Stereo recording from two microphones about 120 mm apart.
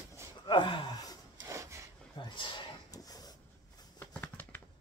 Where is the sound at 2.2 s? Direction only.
45° left (ahead or behind).